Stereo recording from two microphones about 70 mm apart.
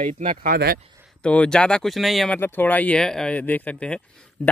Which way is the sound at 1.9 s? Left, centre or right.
Centre.